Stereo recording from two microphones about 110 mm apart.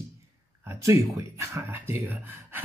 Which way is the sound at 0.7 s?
30° right (ahead or behind).